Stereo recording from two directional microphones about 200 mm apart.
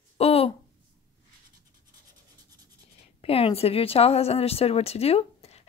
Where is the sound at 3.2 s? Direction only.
30° left (ahead or behind).